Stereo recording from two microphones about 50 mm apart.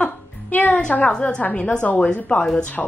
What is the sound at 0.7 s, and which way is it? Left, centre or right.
Speech, left.